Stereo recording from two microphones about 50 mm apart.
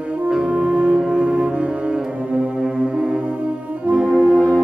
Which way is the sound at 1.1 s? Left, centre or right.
Centre.